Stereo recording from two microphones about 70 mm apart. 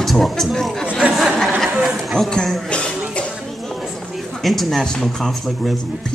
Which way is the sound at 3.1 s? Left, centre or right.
Centre.